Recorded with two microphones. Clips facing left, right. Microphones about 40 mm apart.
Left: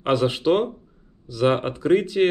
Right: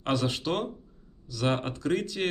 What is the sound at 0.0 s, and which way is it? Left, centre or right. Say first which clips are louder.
Speech: left 8 dB; centre.